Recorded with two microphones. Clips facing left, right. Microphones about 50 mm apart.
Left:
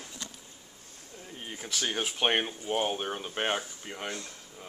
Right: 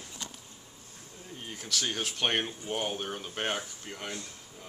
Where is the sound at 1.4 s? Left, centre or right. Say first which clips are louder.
Even; centre.